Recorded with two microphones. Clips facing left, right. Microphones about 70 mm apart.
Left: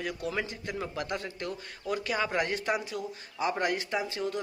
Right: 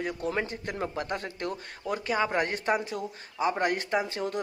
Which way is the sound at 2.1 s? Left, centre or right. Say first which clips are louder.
Right 4 dB; right.